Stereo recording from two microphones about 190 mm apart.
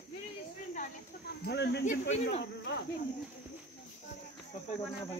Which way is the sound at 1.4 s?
60° left (ahead or behind).